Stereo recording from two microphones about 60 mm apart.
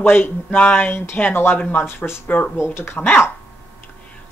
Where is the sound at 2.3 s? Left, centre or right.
Left.